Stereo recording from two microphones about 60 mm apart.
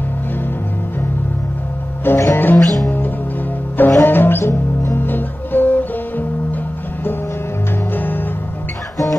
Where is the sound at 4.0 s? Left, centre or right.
Left.